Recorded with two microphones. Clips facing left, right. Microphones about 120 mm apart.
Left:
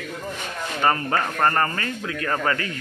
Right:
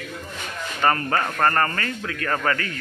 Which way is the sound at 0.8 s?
15° left (ahead or behind).